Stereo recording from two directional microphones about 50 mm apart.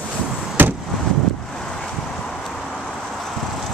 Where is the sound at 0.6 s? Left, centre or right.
Right.